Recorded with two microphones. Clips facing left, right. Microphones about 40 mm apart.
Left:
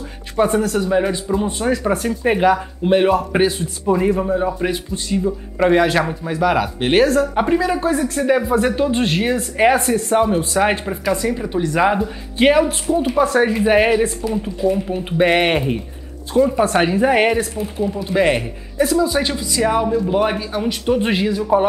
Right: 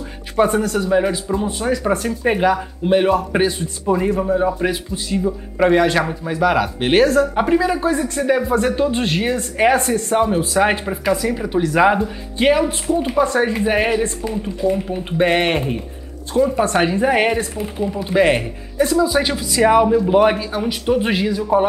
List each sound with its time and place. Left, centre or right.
0.4 s speech: centre
12.4 s speech: centre
20.3 s speech: centre